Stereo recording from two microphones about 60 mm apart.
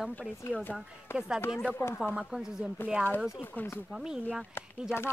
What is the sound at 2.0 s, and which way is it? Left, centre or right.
Speech, centre.